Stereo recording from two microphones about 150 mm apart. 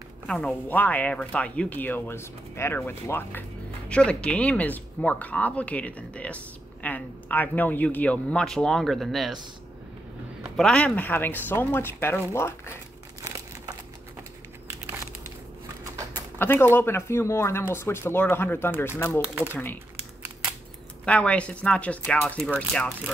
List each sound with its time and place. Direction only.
0.3 s speech: 10° left (ahead or behind)
10.4 s speech: 5° left (ahead or behind)
13.2 s crumpling: 20° right (ahead or behind)
16.3 s speech: 15° left (ahead or behind)
19.2 s speech: 10° right (ahead or behind)
19.5 s speech: 15° left (ahead or behind)
21.0 s speech: 10° left (ahead or behind)